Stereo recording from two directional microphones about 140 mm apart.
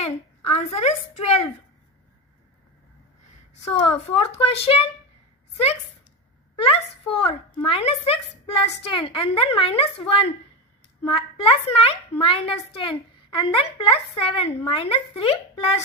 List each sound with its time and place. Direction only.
0.0 s a woman's voice: 50° left (ahead or behind)
3.5 s speech: 45° left (ahead or behind)
6.5 s speech: 40° left (ahead or behind)